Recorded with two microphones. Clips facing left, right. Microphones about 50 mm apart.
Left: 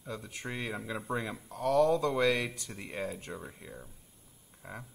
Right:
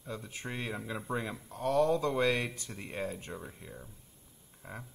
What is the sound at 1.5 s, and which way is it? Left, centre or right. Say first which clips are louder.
Speech: left 2 dB; right.